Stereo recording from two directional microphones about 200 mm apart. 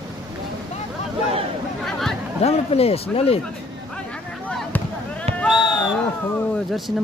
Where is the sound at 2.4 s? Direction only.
30° left (ahead or behind).